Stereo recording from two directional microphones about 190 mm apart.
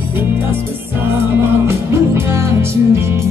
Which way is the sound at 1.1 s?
15° right (ahead or behind).